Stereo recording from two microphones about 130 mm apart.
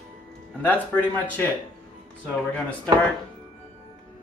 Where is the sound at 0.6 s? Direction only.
15° left (ahead or behind).